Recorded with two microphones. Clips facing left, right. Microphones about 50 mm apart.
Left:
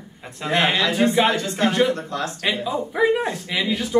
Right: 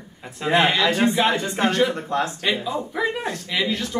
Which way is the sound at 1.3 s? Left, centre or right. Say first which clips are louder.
Even; centre.